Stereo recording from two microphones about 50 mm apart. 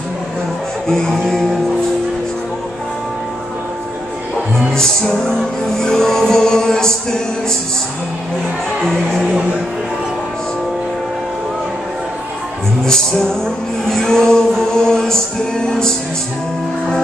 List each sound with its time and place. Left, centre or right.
0.8 s music: centre
4.6 s music: centre
8.8 s speech: centre
9.3 s music: right
12.8 s music: centre